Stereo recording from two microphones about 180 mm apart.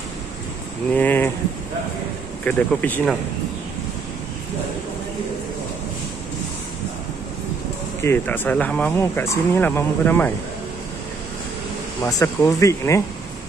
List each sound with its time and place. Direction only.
0.9 s speech: 10° left (ahead or behind)
2.4 s speech: 10° left (ahead or behind)
8.0 s speech: 10° left (ahead or behind)
12.0 s speech: 20° left (ahead or behind)